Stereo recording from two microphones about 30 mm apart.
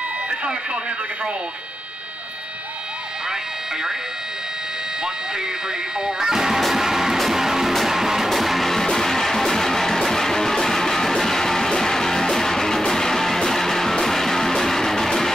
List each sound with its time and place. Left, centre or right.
5.9 s speech: centre
7.2 s music: centre
8.3 s music: centre
8.8 s music: centre